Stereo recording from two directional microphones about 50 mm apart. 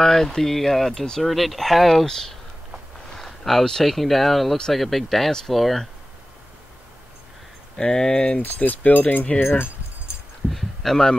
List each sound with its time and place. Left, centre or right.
0.0 s speech: centre
7.7 s speech: centre
8.5 s speech: left
10.5 s speech: centre